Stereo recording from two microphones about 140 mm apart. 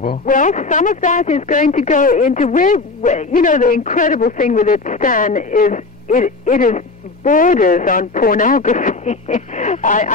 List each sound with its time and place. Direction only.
0.3 s a woman's voice: 65° left (ahead or behind)